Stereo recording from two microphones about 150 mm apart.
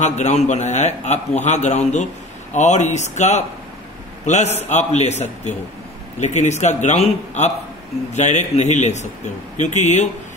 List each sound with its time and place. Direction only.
0.0 s a man's voice: 50° left (ahead or behind)